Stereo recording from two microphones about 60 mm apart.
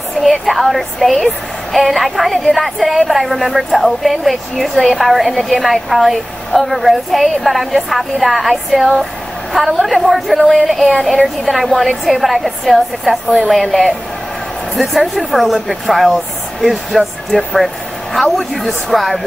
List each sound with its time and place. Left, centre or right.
0.2 s a woman's voice: centre